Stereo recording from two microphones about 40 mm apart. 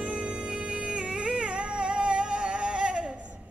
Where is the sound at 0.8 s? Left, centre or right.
Centre.